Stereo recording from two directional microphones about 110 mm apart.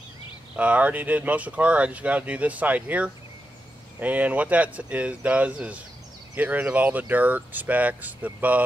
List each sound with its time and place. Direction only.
0.6 s speech: 10° right (ahead or behind)